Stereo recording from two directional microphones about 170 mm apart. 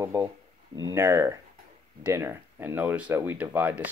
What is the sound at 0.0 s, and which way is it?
Speech, 15° right (ahead or behind).